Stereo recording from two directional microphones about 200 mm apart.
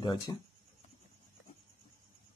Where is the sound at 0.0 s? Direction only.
20° left (ahead or behind).